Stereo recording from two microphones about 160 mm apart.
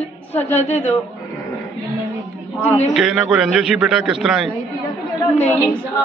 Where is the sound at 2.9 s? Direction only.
5° right (ahead or behind).